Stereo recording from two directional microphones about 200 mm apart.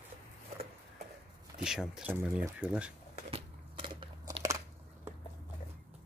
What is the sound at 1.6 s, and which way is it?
Speech, 5° right (ahead or behind).